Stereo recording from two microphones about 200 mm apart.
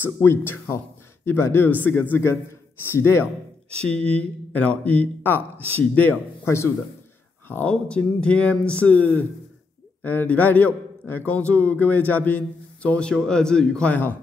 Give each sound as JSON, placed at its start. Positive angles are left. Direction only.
{"t": 0.0, "sound": "a man's voice", "side_deg": 10}